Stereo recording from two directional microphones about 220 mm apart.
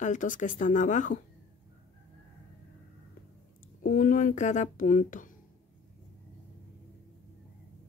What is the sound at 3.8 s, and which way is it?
Speech, 35° left (ahead or behind).